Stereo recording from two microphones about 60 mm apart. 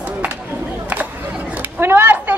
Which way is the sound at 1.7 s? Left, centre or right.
Right.